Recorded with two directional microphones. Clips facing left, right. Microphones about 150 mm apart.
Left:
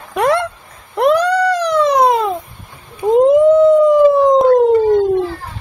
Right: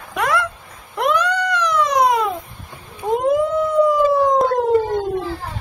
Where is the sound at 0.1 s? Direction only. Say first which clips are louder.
Left 6 dB; 30° left (ahead or behind).